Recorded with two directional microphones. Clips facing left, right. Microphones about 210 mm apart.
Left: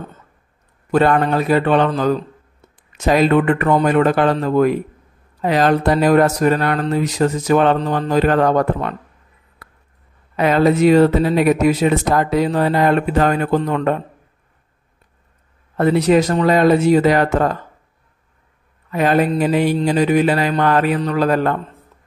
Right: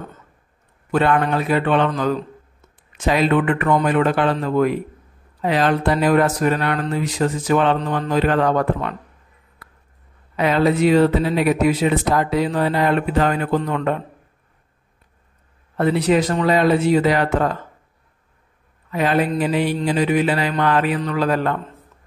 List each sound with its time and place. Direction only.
0.9 s speech: 40° left (ahead or behind)
9.6 s a sound: 45° left (ahead or behind)
10.3 s speech: 45° left (ahead or behind)
15.8 s speech: 45° left (ahead or behind)
18.9 s speech: 45° left (ahead or behind)